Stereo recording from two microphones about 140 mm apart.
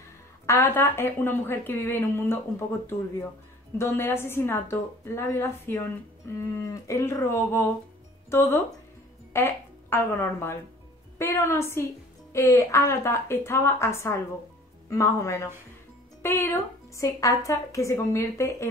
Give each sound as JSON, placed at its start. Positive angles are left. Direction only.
{"t": 0.5, "sound": "a woman's voice", "side_deg": 15}
{"t": 3.7, "sound": "a woman's voice", "side_deg": 15}